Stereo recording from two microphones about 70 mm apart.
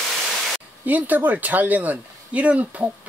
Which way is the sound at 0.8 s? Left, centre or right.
Right.